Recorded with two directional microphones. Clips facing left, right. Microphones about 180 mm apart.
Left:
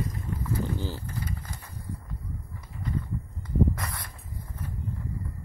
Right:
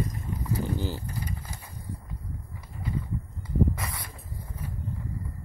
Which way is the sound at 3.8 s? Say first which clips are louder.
Even; 5° right (ahead or behind).